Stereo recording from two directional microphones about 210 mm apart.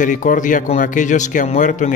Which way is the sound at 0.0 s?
40° left (ahead or behind).